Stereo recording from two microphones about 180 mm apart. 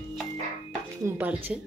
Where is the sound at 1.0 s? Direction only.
10° right (ahead or behind).